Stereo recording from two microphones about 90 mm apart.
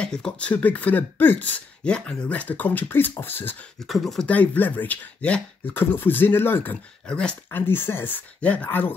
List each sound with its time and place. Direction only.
0.0 s speech: 10° left (ahead or behind)
3.8 s speech: centre (ahead or behind)
4.3 s speech: 20° left (ahead or behind)
7.5 s speech: 25° left (ahead or behind)